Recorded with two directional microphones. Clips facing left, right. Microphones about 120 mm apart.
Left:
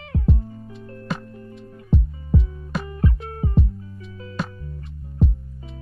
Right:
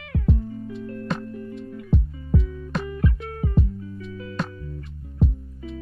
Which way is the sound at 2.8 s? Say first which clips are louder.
Left 2 dB; 30° left (ahead or behind).